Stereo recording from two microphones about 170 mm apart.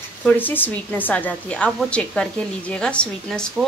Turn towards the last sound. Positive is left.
turn(degrees=5)  # may be behind; listen again after turning